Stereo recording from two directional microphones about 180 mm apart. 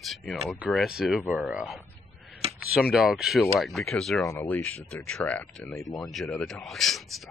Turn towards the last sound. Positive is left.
turn(degrees=0)  # may be behind; listen again after turning